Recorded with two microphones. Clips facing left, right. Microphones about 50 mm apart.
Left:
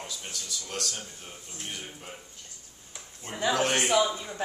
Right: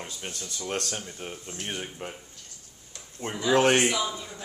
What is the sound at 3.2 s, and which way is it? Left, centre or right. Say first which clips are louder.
Speech: right 6 dB; right.